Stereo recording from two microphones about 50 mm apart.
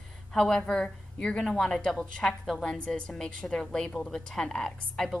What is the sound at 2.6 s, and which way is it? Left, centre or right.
Speech, centre.